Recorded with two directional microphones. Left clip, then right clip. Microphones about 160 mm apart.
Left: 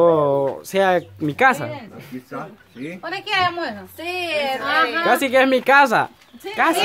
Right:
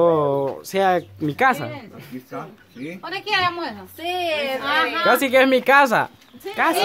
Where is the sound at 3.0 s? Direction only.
5° left (ahead or behind).